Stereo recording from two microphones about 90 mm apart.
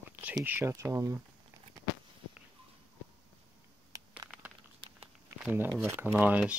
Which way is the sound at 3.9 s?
40° right (ahead or behind).